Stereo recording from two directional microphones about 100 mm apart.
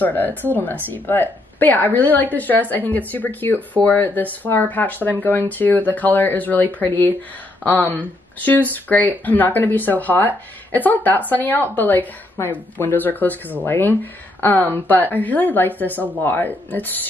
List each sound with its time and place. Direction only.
0.0 s a woman's voice: 20° left (ahead or behind)